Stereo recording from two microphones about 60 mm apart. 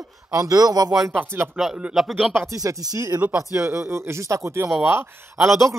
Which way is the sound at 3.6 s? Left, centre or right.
Right.